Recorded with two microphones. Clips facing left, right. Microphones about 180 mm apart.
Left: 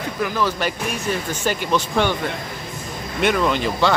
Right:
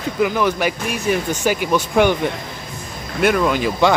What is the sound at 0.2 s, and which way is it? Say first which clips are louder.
Speech: right 4 dB; 15° right (ahead or behind).